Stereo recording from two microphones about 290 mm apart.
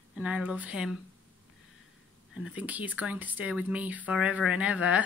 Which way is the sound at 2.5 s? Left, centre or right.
Centre.